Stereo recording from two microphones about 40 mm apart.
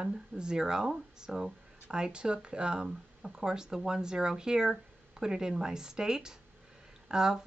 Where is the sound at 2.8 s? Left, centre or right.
Centre.